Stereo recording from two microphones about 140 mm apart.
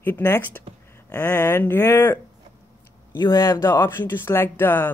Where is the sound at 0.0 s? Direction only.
15° left (ahead or behind).